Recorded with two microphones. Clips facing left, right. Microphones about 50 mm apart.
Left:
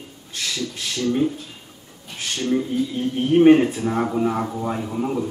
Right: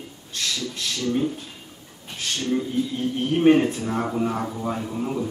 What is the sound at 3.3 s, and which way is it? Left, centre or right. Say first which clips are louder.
Speech: left 4 dB; centre.